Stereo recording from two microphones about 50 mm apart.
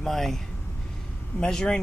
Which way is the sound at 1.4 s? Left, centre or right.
Centre.